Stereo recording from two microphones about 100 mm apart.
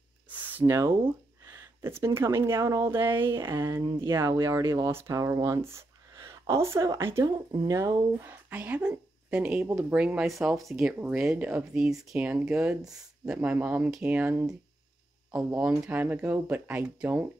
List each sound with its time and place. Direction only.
0.3 s a sound: 20° right (ahead or behind)
0.7 s speech: 30° right (ahead or behind)
8.1 s speech: 20° right (ahead or behind); by 11.0 s centre (ahead or behind)
11.3 s speech: 10° right (ahead or behind)